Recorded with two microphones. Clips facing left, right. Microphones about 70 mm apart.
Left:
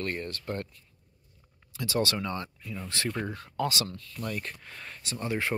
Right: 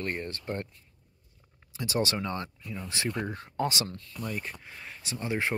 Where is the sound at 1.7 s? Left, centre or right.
Right.